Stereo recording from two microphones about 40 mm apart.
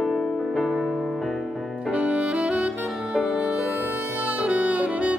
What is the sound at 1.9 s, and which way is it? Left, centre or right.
Saxophone, right.